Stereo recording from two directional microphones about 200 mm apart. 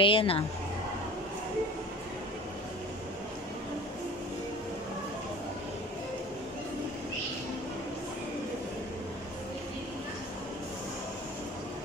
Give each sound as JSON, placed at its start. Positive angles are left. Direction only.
{"t": 0.0, "sound": "speech", "side_deg": 25}